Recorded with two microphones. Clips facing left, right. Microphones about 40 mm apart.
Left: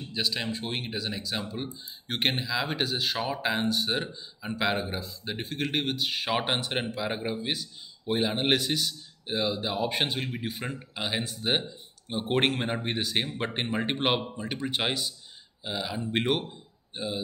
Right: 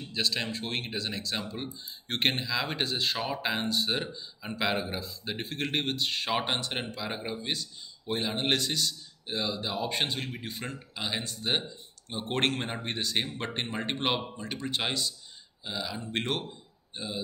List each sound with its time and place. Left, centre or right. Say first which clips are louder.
0.0 s a man's voice: even; centre